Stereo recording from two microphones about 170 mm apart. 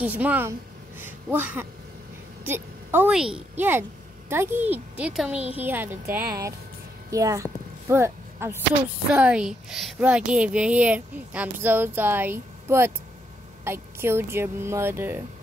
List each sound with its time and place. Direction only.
0.0 s a woman's voice: 10° right (ahead or behind)